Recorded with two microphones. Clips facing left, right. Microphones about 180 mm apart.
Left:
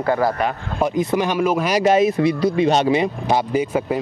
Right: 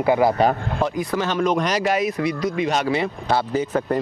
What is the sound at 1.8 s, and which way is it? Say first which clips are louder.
Speech: left 6 dB; 25° left (ahead or behind).